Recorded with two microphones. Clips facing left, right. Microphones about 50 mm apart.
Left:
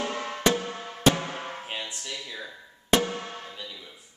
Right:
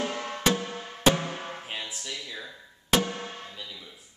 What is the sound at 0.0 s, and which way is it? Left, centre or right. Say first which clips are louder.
Music: left 2 dB; centre.